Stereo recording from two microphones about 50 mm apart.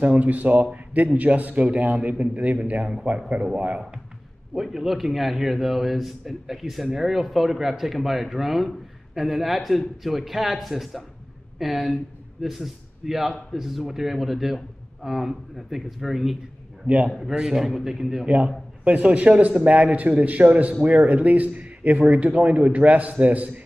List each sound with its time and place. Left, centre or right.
0.0 s speech: right
4.6 s a man's voice: centre
16.8 s speech: centre
17.2 s a man's voice: centre
18.2 s speech: right